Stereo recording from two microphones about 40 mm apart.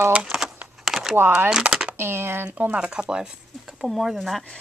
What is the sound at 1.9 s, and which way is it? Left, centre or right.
Speech, right.